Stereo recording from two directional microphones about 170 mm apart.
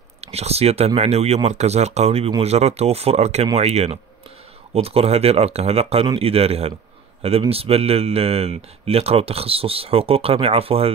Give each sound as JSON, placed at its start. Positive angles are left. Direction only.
{"t": 0.2, "sound": "speech", "side_deg": -40}